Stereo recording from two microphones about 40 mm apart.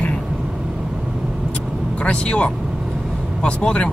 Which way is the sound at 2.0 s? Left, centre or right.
Left.